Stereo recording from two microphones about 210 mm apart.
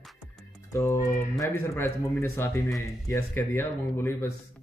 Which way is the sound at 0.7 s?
15° left (ahead or behind).